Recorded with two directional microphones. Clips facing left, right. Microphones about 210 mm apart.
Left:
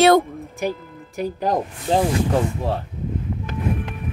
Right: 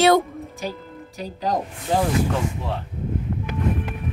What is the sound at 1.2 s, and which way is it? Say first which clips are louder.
Speech: left 4 dB; 55° left (ahead or behind).